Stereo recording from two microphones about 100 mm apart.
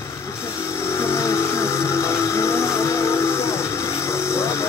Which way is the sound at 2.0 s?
30° left (ahead or behind).